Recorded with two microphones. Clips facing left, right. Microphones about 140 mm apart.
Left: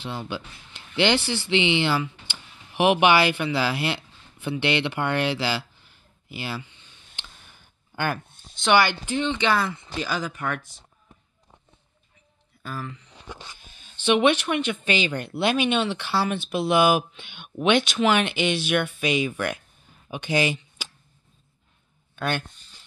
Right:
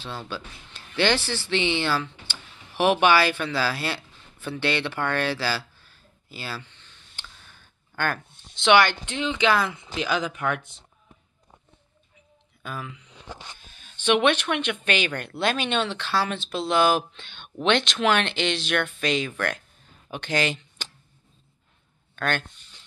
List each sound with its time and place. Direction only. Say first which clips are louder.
0.0 s speech: left 2 dB; 15° left (ahead or behind)
6.3 s a sound: left 3 dB; 15° left (ahead or behind)
8.5 s speech: right 1 dB; centre (ahead or behind)
12.6 s speech: left 1 dB; centre (ahead or behind)
14.2 s speech: left 2 dB; 10° left (ahead or behind)
14.6 s a woman's voice: left 1 dB; 65° right (ahead or behind)
15.0 s speech: left 2 dB; 15° left (ahead or behind)
20.1 s a sound: left 2 dB; 10° left (ahead or behind)
22.1 s a sound: even; 10° left (ahead or behind)